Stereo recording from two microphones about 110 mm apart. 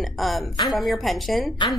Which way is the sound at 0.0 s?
Centre (ahead or behind).